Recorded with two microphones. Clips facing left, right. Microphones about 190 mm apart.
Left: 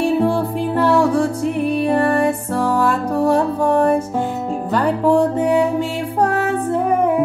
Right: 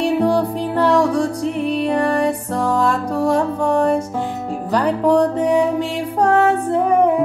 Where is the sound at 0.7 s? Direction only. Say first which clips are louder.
Even; 5° left (ahead or behind).